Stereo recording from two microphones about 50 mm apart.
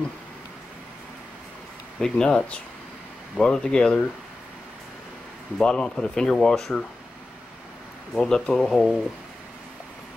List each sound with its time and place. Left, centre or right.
2.0 s speech: centre
5.6 s speech: centre
8.1 s speech: centre